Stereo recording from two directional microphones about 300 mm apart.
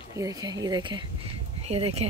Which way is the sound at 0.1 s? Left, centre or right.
Centre.